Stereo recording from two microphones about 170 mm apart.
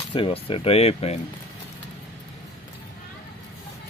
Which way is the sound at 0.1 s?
30° left (ahead or behind).